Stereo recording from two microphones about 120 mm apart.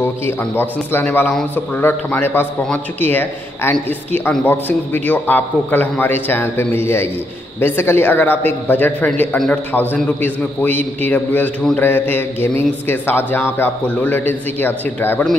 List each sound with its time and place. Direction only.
0.6 s speech: 15° left (ahead or behind)